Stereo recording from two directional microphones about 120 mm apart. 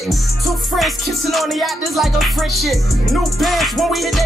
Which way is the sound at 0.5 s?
Centre (ahead or behind).